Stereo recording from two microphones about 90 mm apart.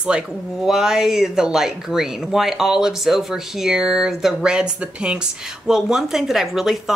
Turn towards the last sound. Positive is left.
turn(degrees=-5)  # may be behind; listen again after turning